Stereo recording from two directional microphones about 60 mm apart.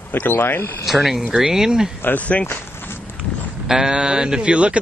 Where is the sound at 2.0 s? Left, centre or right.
Left.